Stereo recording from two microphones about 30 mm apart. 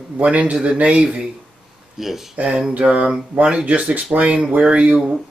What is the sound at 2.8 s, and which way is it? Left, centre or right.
Speech, right.